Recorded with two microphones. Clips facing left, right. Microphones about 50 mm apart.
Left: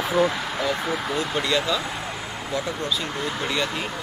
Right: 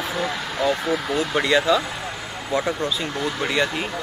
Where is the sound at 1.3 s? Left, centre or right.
Centre.